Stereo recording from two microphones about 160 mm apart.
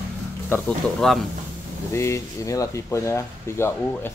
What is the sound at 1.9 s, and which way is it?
Speech, 20° left (ahead or behind).